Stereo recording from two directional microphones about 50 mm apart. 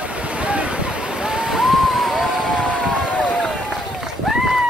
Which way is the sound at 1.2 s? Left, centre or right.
Centre.